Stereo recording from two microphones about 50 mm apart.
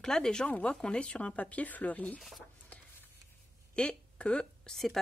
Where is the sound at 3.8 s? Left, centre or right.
Left.